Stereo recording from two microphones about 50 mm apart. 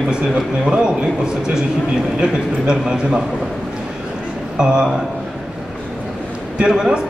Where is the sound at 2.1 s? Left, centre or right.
Centre.